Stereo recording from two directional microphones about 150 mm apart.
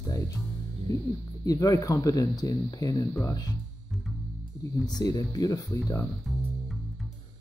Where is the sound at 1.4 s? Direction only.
25° left (ahead or behind).